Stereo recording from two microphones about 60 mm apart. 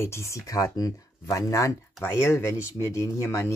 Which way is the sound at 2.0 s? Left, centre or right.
Left.